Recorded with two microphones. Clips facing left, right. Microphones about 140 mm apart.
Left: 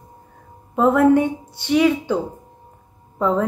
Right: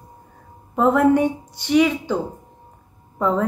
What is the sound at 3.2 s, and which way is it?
Speech, 15° left (ahead or behind).